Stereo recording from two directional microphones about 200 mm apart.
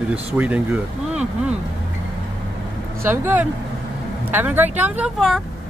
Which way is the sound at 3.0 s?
10° right (ahead or behind).